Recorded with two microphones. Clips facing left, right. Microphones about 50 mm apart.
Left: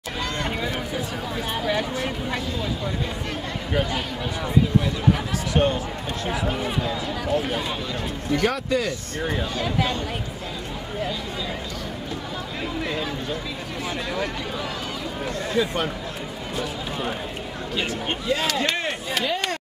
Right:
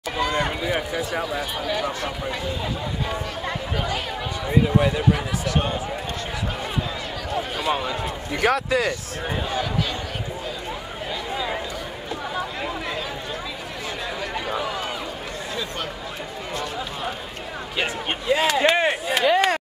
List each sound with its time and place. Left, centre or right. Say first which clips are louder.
0.2 s speech: right 5 dB; centre
1.7 s speech: left 1 dB; centre
4.5 s speech: right 2 dB; right
8.3 s a man's voice: right 1 dB; centre
8.5 s a man's voice: right 2 dB; centre
15.5 s speech: left 8 dB; centre
17.7 s speech: right 1 dB; centre
19.2 s chop: right 10 dB; centre